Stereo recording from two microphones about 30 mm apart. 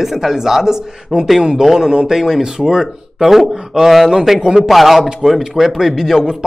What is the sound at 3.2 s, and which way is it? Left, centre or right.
A man's voice, centre.